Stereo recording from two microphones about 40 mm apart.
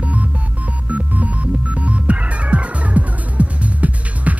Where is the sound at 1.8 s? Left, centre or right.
Right.